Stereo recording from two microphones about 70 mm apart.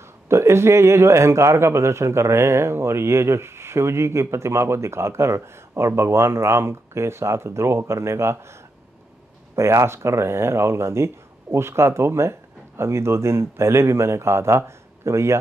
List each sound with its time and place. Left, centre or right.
0.0 s a man's voice: right
9.6 s a man's voice: right